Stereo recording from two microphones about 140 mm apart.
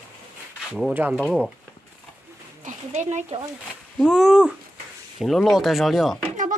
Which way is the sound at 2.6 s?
60° right (ahead or behind).